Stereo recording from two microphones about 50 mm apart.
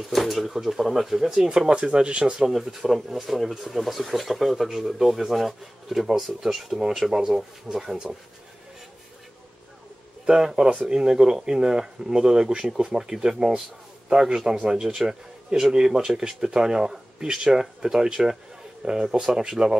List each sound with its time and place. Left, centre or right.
0.0 s speech: centre
1.7 s speech: centre
2.4 s speech: centre
10.2 s speech: centre